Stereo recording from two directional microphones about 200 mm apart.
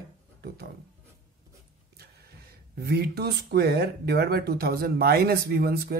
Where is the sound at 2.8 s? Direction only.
50° right (ahead or behind).